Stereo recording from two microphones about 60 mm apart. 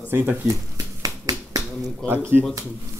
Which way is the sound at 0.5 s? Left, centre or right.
Right.